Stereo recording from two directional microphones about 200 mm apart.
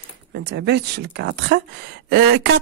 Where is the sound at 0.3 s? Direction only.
55° right (ahead or behind).